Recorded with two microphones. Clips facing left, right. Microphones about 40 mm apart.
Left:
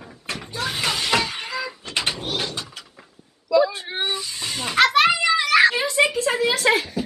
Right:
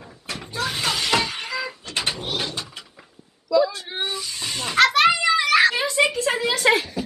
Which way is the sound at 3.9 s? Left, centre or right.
Centre.